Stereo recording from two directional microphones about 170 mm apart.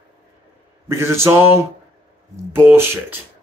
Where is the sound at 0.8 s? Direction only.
15° right (ahead or behind).